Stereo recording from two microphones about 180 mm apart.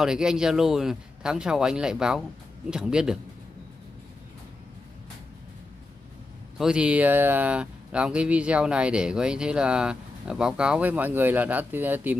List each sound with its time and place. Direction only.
0.0 s speech: 5° right (ahead or behind)
6.6 s speech: 5° right (ahead or behind)